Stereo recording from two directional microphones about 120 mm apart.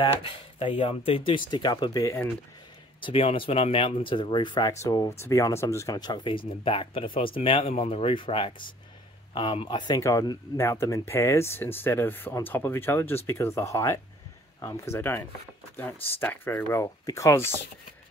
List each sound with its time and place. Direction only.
0.0 s speech: 50° left (ahead or behind); by 2.1 s 30° left (ahead or behind)
3.0 s speech: 50° left (ahead or behind); by 17.5 s 25° left (ahead or behind)